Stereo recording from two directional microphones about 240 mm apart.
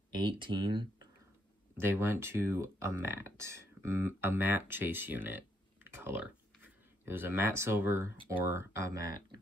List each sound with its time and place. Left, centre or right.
0.1 s speech: centre
5.9 s a sound: centre
8.4 s speech: centre